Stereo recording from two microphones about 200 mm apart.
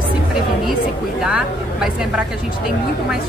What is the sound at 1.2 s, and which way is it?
Speech, 5° right (ahead or behind).